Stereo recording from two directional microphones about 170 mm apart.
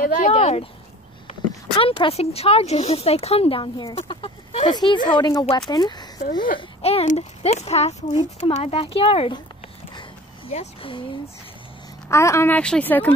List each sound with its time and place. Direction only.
0.0 s speech: 45° left (ahead or behind)
1.8 s speech: 35° left (ahead or behind)
4.7 s speech: 25° left (ahead or behind)
6.8 s speech: 35° left (ahead or behind)
9.9 s a sound: 35° left (ahead or behind)
12.1 s speech: 15° left (ahead or behind)